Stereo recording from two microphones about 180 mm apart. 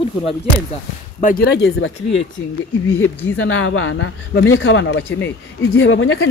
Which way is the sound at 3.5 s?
90° left.